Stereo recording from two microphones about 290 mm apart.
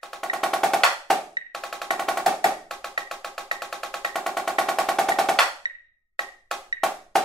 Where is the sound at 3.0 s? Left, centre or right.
Centre.